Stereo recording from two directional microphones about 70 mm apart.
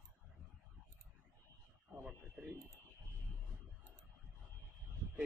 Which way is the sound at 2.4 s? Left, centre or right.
Right.